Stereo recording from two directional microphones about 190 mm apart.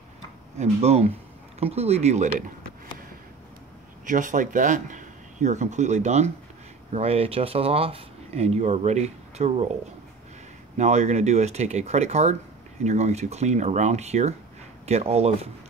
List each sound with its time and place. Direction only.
0.6 s speech: 35° right (ahead or behind)
4.0 s speech: 45° right (ahead or behind)
10.8 s speech: 35° right (ahead or behind)